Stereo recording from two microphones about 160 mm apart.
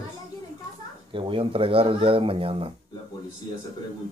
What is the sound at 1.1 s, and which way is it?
Speech, 30° right (ahead or behind).